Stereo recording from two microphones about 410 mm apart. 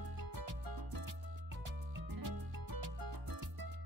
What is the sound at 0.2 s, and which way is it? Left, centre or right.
Music, right.